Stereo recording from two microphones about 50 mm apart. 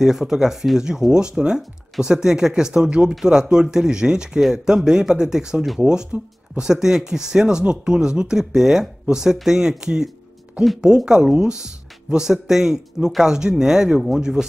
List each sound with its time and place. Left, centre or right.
0.0 s speech: centre
6.1 s speech: right
6.6 s speech: centre
11.1 s speech: centre